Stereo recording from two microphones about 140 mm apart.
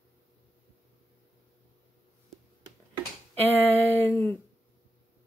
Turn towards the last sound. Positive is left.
turn(degrees=15)  # may be behind; listen again after turning